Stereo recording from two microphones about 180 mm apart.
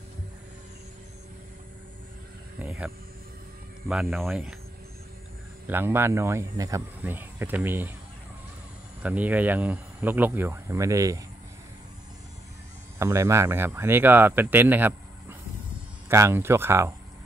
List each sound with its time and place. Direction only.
3.9 s speech: 5° right (ahead or behind)
5.7 s speech: 10° right (ahead or behind)
9.0 s speech: 10° right (ahead or behind)
13.0 s speech: 15° right (ahead or behind)